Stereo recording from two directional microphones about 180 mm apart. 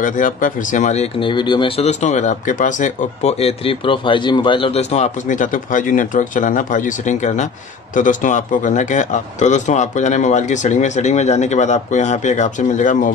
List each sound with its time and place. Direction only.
0.0 s speech: 45° left (ahead or behind)